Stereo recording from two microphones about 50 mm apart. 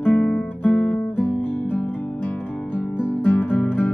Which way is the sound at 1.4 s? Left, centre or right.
Left.